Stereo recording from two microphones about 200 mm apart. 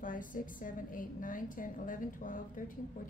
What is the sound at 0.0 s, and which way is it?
A woman's voice, 40° left (ahead or behind).